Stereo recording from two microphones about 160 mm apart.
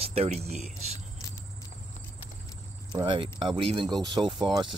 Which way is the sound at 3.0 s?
30° right (ahead or behind).